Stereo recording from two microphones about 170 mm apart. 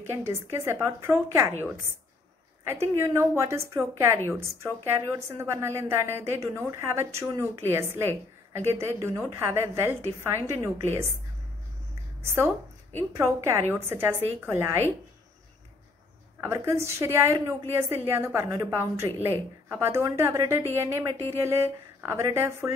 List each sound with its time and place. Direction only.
0.0 s a woman's voice: 15° right (ahead or behind)
2.6 s a woman's voice: 15° right (ahead or behind)
12.2 s a woman's voice: 15° right (ahead or behind)
16.4 s a woman's voice: 15° right (ahead or behind)